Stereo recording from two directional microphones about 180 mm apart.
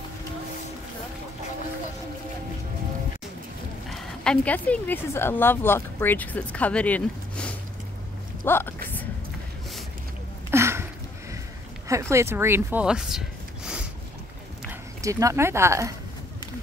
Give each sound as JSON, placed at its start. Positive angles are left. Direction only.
{"t": 4.2, "sound": "speech", "side_deg": 5}
{"t": 10.5, "sound": "a sound", "side_deg": -15}
{"t": 11.9, "sound": "speech", "side_deg": -15}
{"t": 14.7, "sound": "speech", "side_deg": -15}